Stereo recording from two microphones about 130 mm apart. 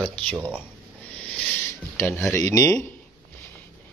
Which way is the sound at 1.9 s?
20° left (ahead or behind).